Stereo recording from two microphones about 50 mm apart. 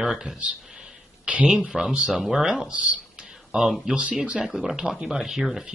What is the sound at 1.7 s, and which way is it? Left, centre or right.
Speech, centre.